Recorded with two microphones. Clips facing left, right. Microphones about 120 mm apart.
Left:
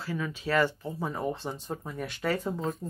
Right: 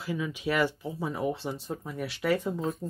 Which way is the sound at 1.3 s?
45° left (ahead or behind).